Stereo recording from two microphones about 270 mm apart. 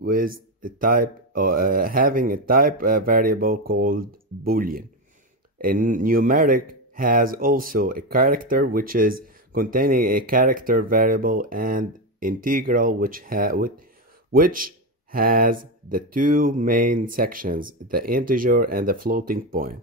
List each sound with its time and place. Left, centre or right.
0.0 s speech: right